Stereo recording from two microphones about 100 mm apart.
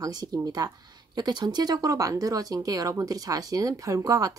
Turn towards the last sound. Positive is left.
turn(degrees=-35)  # may be behind; listen again after turning